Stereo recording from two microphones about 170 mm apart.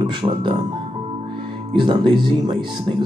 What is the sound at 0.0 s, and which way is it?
Speech, 30° right (ahead or behind).